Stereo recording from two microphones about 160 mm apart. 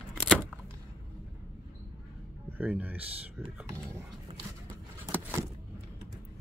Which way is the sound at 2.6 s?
10° right (ahead or behind).